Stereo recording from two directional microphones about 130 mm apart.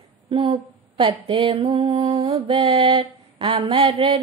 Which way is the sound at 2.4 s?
50° right (ahead or behind).